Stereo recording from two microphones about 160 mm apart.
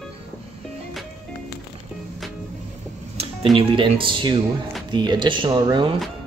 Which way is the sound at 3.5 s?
35° right (ahead or behind).